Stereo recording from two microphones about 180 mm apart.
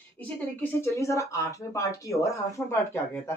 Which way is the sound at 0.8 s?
15° left (ahead or behind).